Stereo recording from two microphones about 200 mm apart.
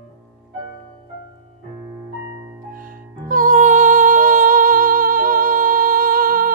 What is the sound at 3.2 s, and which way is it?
Music, 40° right (ahead or behind).